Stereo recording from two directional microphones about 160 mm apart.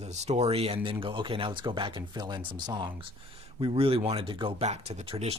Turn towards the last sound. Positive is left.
turn(degrees=-40)  # may be behind; listen again after turning